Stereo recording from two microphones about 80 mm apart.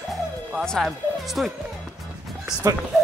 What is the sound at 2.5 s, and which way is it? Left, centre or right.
Speech, left.